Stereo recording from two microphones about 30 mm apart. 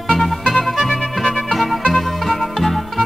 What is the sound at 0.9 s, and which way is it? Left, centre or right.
Music, left.